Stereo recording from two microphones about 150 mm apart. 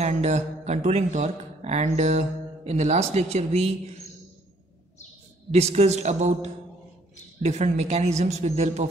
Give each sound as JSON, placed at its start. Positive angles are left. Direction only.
{"t": 0.0, "sound": "speech", "side_deg": -50}
{"t": 5.5, "sound": "speech", "side_deg": -45}
{"t": 7.4, "sound": "speech", "side_deg": -50}